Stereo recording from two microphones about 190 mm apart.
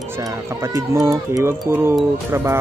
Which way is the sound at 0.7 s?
15° right (ahead or behind).